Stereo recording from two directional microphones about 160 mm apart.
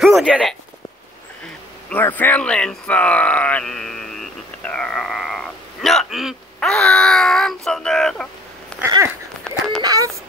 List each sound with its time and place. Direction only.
0.0 s speech: centre (ahead or behind)
1.9 s speech: 10° left (ahead or behind)
8.8 s a sound: 15° right (ahead or behind)
9.8 s speech: 20° right (ahead or behind)